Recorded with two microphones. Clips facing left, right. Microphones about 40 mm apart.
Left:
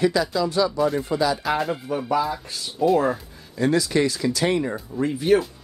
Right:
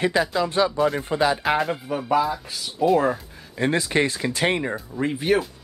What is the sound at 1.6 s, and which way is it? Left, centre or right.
Speech, centre.